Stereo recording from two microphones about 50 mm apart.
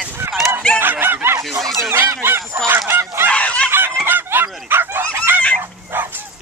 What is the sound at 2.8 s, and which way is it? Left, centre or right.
Snicker, right.